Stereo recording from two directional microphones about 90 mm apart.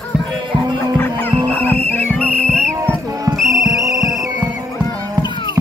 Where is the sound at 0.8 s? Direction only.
25° left (ahead or behind).